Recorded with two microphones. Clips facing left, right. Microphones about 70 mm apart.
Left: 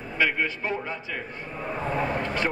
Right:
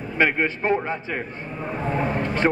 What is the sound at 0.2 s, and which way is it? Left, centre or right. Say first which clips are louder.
A man's voice: right 4 dB; right.